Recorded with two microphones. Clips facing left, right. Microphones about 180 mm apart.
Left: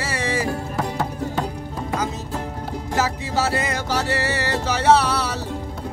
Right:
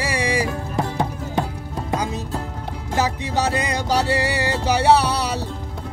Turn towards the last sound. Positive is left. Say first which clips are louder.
# even
turn(degrees=-15)  # may be behind; listen again after turning